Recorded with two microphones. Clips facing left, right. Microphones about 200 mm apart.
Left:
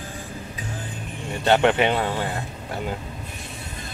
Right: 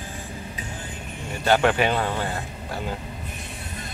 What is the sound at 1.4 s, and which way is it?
Speech, 25° left (ahead or behind).